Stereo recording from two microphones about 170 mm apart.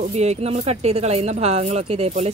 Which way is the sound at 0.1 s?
40° right (ahead or behind).